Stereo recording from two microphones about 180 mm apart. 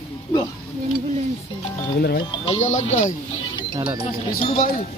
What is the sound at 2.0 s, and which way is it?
Speech, 65° left (ahead or behind).